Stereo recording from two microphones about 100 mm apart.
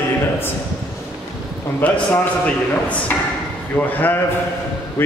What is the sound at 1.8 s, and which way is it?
Speech, 15° left (ahead or behind).